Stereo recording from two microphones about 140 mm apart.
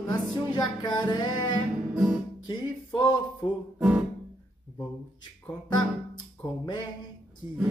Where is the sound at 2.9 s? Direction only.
30° left (ahead or behind).